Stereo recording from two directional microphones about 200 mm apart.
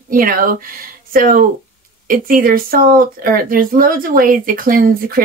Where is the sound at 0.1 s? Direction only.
45° right (ahead or behind).